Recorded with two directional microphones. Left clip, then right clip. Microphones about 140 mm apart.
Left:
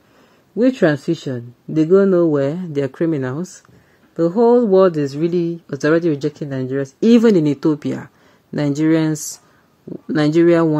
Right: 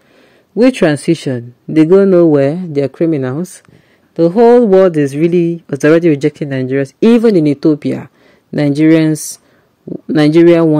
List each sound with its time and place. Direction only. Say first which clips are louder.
0.6 s speech: right 5 dB; 50° right (ahead or behind)